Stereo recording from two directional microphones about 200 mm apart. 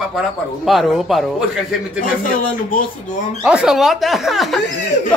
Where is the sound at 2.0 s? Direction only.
40° left (ahead or behind).